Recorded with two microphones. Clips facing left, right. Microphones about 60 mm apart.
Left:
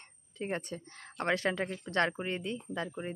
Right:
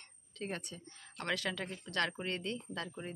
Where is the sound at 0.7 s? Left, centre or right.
Left.